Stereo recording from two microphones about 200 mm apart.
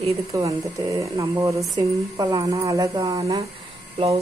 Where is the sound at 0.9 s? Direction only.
15° right (ahead or behind).